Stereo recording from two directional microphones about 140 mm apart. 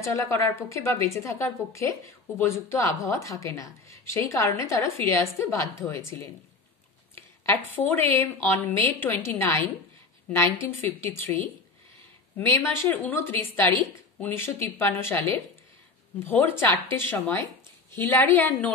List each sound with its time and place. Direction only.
0.0 s a woman's voice: 20° left (ahead or behind)
12.4 s a woman's voice: 15° left (ahead or behind)